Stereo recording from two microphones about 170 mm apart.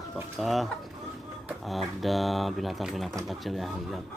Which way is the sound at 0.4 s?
Centre (ahead or behind).